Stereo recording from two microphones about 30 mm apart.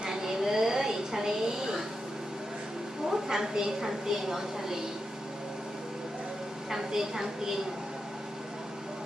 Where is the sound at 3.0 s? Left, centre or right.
Centre.